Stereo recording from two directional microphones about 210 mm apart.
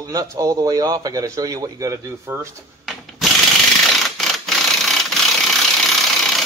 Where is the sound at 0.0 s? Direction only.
15° right (ahead or behind).